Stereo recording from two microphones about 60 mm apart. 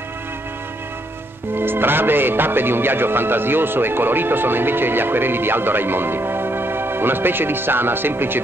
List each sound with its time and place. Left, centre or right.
1.5 s speech: right